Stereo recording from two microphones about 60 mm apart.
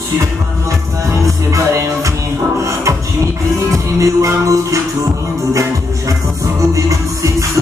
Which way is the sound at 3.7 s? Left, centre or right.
Right.